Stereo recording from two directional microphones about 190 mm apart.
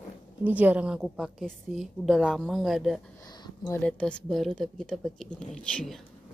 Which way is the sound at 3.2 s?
20° left (ahead or behind).